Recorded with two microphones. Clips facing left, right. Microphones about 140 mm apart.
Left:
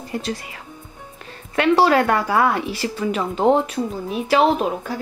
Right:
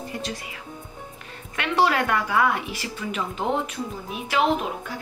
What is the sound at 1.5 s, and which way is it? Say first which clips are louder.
A woman's voice: left 7 dB; 35° left (ahead or behind).